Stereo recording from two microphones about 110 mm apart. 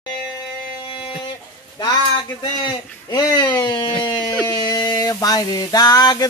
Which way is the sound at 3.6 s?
45° left (ahead or behind).